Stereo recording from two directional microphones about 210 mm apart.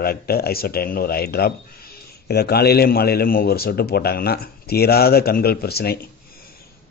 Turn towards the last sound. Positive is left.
turn(degrees=50)  # may be behind; listen again after turning